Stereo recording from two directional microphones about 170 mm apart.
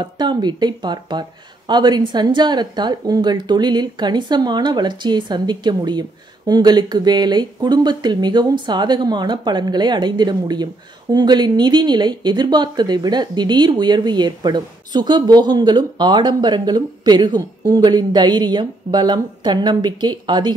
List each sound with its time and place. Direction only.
0.0 s a woman's voice: 25° right (ahead or behind)